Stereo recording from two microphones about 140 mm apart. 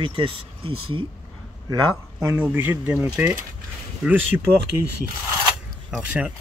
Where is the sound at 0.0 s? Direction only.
40° right (ahead or behind).